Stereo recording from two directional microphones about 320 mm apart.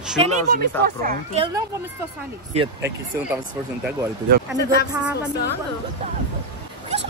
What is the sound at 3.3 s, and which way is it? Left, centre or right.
Speech, centre.